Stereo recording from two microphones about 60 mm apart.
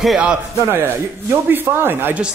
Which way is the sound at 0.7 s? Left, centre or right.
Right.